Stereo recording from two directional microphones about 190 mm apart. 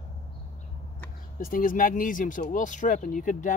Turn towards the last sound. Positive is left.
turn(degrees=40)  # may be behind; listen again after turning